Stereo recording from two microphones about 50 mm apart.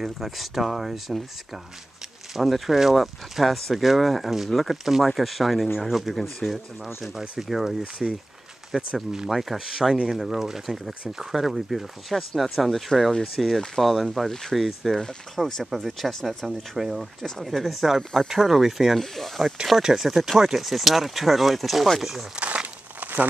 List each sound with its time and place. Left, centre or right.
0.0 s speech: centre
2.3 s speech: centre
22.3 s crumpling: right